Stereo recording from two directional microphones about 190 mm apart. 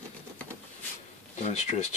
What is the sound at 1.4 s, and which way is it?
Speech, 35° left (ahead or behind).